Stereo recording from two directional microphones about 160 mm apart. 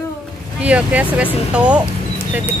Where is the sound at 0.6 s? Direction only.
10° right (ahead or behind).